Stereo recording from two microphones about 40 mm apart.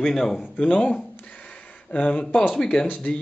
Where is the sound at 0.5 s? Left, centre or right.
Left.